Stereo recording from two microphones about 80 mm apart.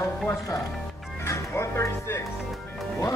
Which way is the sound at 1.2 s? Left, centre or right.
Left.